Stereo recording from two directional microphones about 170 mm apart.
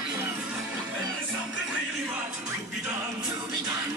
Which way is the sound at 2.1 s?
15° right (ahead or behind).